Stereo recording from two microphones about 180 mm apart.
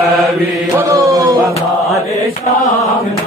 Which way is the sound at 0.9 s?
20° right (ahead or behind).